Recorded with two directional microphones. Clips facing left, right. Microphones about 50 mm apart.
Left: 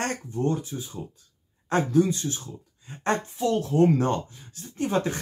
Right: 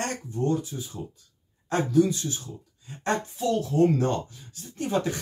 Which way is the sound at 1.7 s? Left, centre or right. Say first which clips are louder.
Even; left.